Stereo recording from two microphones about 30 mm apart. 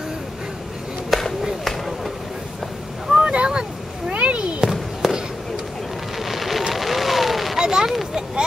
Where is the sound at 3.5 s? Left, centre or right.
Right.